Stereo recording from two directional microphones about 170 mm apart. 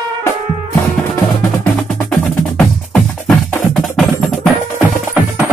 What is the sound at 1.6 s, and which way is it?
Music, 5° left (ahead or behind).